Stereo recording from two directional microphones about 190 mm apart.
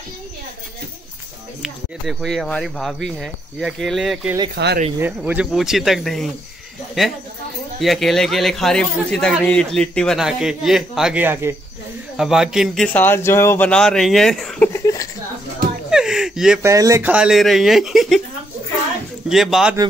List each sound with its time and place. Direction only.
1.6 s speech: centre (ahead or behind)
4.6 s speech: 60° right (ahead or behind)
4.9 s speech: 10° right (ahead or behind)
7.8 s speech: centre (ahead or behind)
14.7 s a sound: 15° left (ahead or behind)
15.9 s speech: 5° right (ahead or behind)
16.6 s speech: 15° right (ahead or behind); by 18.2 s centre (ahead or behind)
19.2 s speech: centre (ahead or behind)